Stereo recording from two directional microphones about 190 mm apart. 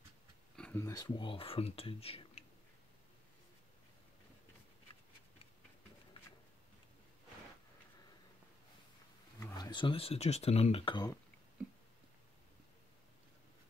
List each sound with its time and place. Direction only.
0.6 s speech: 10° left (ahead or behind); by 2.4 s 30° left (ahead or behind)
9.4 s speech: 20° left (ahead or behind)